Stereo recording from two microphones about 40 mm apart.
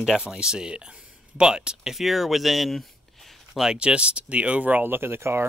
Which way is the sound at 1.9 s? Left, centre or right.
Centre.